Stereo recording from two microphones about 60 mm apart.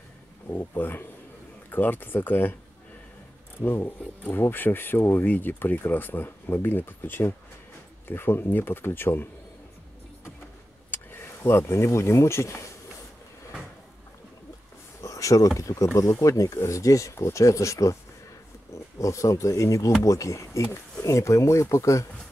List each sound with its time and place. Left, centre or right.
0.5 s speech: left
3.6 s speech: left
10.9 s speech: left
15.0 s speech: left
21.1 s speech: left